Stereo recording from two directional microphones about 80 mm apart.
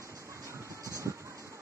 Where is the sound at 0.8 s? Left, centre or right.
Right.